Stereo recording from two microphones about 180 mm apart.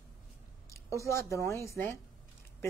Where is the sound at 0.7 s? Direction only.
15° left (ahead or behind).